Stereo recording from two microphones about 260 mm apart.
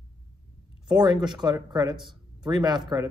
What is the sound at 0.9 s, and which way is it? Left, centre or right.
Speech, centre.